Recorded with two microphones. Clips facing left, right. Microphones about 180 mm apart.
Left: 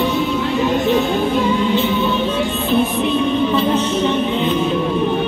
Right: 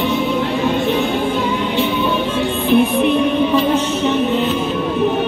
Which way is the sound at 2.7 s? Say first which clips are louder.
Right 4 dB; 15° right (ahead or behind).